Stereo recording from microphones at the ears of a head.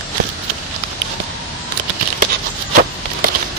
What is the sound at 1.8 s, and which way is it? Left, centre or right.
Patter, right.